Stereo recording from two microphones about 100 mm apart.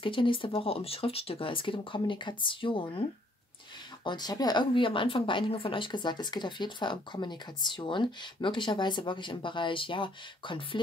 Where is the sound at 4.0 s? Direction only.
45° left (ahead or behind).